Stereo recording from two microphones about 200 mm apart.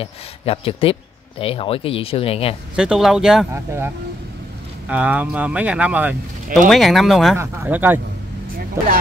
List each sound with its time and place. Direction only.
0.0 s speech: 30° left (ahead or behind)
2.7 s speech: 5° right (ahead or behind)
7.3 s speech: 10° right (ahead or behind)